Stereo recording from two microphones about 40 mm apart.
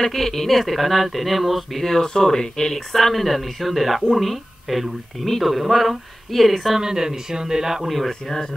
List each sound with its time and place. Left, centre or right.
0.0 s speech: centre
6.8 s a man's voice: centre
8.1 s speech: centre